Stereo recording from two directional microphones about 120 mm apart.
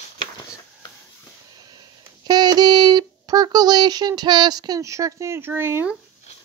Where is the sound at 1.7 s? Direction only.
35° right (ahead or behind); by 5.9 s 20° right (ahead or behind).